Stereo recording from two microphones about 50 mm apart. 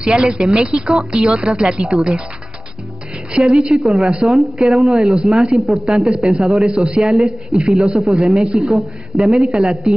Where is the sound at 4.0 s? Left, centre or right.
Centre.